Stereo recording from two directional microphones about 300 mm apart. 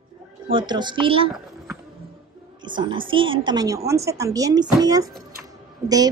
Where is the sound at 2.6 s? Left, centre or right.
Centre.